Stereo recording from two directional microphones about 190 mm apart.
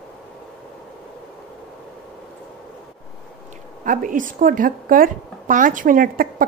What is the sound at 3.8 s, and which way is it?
Speech, 45° right (ahead or behind).